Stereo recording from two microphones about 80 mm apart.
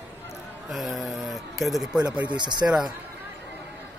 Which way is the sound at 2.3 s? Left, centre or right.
Right.